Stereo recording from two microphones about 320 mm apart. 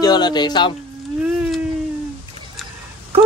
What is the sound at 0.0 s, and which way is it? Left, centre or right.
Speech, centre.